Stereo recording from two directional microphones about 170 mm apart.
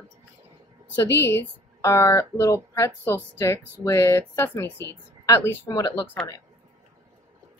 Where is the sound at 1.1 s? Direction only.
15° left (ahead or behind).